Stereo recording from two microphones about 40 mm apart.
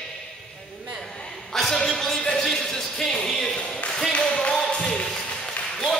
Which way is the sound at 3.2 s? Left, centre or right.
Centre.